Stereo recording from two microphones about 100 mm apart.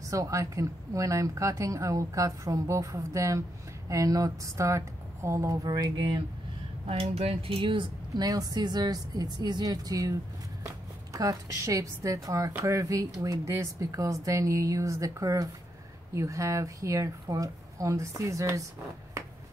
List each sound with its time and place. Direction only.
0.1 s speech: 35° right (ahead or behind)
6.9 s speech: 85° right; by 7.9 s 55° right (ahead or behind)
8.2 s speech: 40° right (ahead or behind)
11.1 s speech: 35° right (ahead or behind)